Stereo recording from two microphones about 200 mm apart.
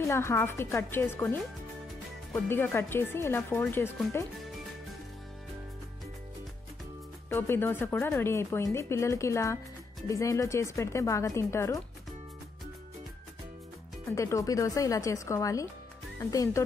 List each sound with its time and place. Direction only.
0.1 s speech: 15° left (ahead or behind)
7.2 s speech: 10° left (ahead or behind)
14.1 s speech: 15° left (ahead or behind)